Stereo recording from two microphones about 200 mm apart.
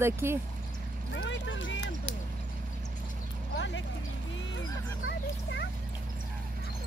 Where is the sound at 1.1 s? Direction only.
65° left (ahead or behind).